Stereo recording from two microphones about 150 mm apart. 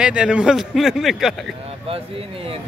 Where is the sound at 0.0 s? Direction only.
5° right (ahead or behind).